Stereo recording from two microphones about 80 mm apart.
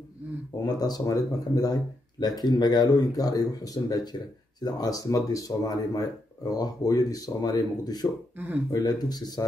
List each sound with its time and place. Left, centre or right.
0.6 s speech: left